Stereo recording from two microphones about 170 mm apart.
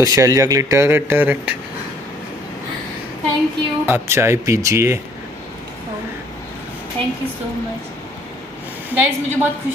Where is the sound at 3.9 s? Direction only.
15° right (ahead or behind).